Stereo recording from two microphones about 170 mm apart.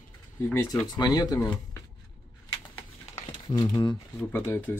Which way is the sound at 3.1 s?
35° left (ahead or behind).